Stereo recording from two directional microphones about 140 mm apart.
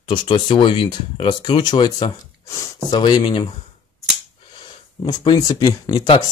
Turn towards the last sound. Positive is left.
turn(degrees=25)  # may be behind; listen again after turning